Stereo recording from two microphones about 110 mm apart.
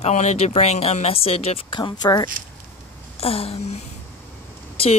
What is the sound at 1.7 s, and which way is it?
Speech, 45° left (ahead or behind).